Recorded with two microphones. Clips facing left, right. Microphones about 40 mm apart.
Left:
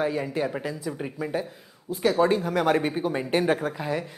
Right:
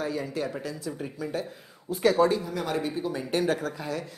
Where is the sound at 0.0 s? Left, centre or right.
Left.